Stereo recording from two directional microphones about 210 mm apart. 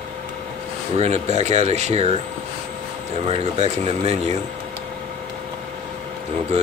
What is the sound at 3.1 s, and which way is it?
Speech, 30° right (ahead or behind).